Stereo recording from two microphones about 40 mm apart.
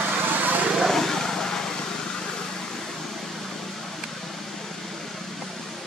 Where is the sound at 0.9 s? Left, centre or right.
Centre.